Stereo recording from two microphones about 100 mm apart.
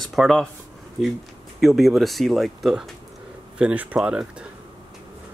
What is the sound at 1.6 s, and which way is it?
Speech, centre (ahead or behind).